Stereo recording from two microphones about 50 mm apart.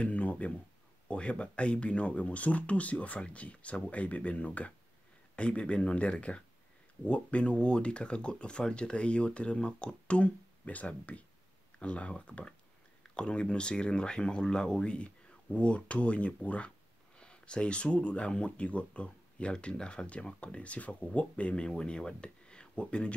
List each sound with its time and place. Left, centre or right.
0.0 s speech: left